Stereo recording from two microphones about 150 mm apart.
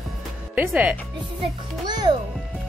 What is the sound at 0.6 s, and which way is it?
Speech, 10° right (ahead or behind).